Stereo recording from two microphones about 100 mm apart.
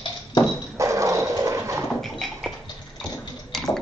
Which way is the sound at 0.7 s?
30° right (ahead or behind).